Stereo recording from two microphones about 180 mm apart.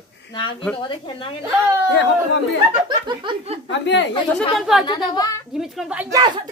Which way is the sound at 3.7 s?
85° left.